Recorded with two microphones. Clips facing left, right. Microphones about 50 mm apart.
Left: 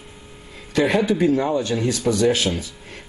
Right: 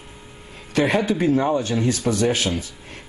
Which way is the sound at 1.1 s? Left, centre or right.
Centre.